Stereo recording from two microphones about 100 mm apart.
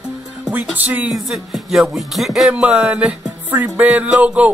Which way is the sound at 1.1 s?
Centre (ahead or behind).